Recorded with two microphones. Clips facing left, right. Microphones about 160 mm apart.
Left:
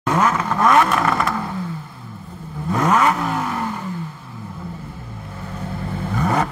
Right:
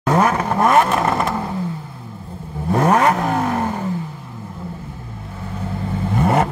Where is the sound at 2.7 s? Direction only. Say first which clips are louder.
Right 3 dB; 35° right (ahead or behind).